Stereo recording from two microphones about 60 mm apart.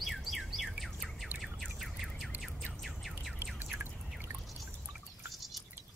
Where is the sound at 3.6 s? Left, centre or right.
Right.